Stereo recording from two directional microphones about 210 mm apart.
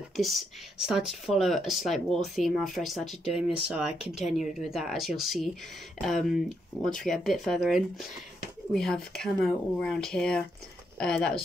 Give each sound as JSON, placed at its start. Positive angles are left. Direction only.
{"t": 0.1, "sound": "speech", "side_deg": 0}